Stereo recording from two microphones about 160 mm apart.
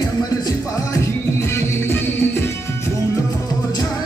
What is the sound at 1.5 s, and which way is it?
Music, 15° left (ahead or behind).